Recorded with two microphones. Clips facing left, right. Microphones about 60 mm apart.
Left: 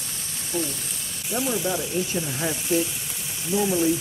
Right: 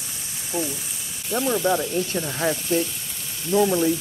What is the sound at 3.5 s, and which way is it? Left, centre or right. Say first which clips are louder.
Speech: right 5 dB; right.